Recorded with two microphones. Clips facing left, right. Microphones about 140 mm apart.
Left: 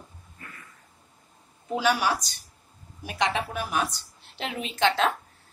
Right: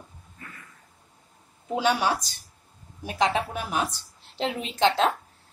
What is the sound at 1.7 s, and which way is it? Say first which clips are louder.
A woman's voice: right 1 dB; 25° right (ahead or behind).